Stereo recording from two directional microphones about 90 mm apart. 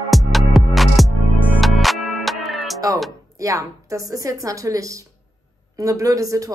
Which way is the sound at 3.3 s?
40° right (ahead or behind).